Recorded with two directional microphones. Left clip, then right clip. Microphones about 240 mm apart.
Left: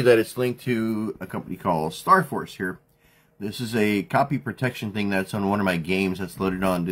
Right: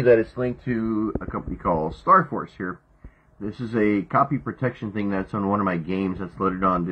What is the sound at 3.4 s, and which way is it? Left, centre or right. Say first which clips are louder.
Speech: right 1 dB; left.